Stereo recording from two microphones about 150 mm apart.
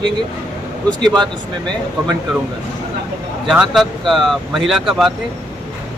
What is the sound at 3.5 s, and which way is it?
Speech, centre (ahead or behind).